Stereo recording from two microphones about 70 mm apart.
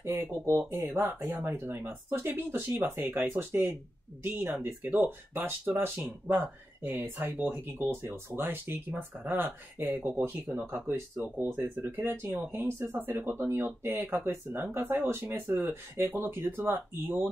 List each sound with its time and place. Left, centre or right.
0.0 s speech: right
4.8 s speech: right